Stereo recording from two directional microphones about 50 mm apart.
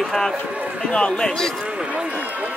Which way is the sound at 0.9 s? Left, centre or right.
Centre.